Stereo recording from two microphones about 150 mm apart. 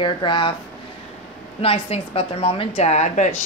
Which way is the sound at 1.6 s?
40° left (ahead or behind).